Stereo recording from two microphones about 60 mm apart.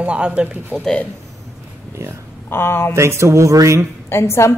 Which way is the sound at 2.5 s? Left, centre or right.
Left.